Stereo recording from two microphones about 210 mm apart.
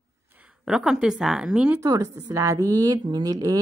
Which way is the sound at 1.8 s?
15° right (ahead or behind).